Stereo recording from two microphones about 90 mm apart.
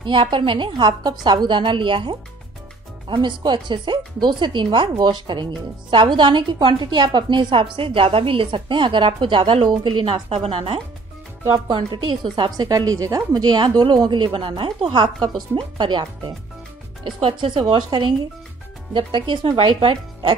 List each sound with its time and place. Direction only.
0.0 s speech: 65° right (ahead or behind)
1.6 s a woman's voice: 70° right (ahead or behind); by 10.8 s 90° right
11.5 s speech: 55° right (ahead or behind)
14.0 s a woman's voice: 65° right (ahead or behind)
15.5 s speech: 60° right (ahead or behind)
17.0 s a woman's voice: 80° right
17.9 s a woman's voice: 60° right (ahead or behind)